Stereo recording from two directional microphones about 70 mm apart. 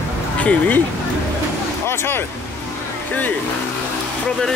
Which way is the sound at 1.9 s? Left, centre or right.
Left.